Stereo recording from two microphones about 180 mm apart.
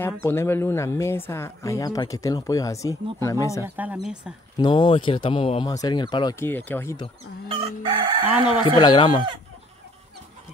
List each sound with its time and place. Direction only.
0.0 s speech: 15° left (ahead or behind)
3.6 s speech: 10° right (ahead or behind)
4.6 s speech: 25° left (ahead or behind)
6.4 s speech: 10° left (ahead or behind)
7.4 s chicken: 30° right (ahead or behind)
8.7 s speech: 25° left (ahead or behind)